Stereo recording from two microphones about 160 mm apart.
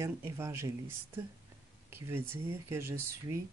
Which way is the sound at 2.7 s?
15° right (ahead or behind).